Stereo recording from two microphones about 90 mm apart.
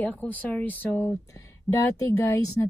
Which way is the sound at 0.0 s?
20° left (ahead or behind).